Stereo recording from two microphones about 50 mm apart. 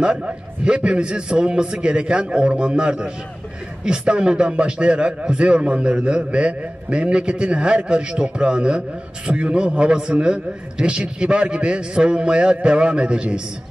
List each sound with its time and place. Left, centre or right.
0.0 s a man's voice: centre